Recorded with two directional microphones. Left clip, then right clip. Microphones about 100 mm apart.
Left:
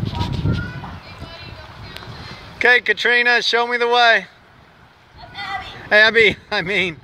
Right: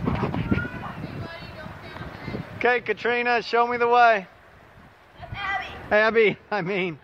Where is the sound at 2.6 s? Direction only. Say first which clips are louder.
Left 8 dB; centre (ahead or behind).